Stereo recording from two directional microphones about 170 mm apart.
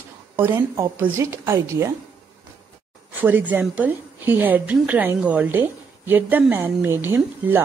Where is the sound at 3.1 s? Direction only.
10° right (ahead or behind).